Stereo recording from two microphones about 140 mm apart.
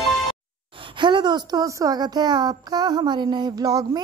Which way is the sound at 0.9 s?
35° right (ahead or behind).